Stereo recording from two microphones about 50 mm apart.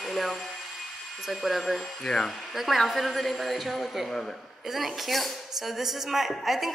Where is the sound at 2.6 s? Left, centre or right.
Centre.